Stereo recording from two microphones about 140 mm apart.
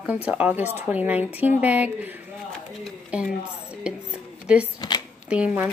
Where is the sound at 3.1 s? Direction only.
10° right (ahead or behind).